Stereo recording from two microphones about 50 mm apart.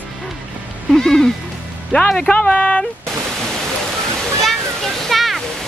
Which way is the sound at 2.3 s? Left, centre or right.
Left.